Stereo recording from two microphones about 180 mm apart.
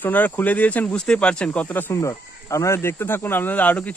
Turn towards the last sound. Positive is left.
turn(degrees=10)  # may be behind; listen again after turning